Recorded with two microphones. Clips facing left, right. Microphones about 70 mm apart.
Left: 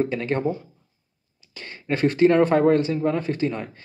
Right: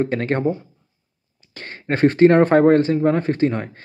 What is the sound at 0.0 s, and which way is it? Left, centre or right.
Speech, right.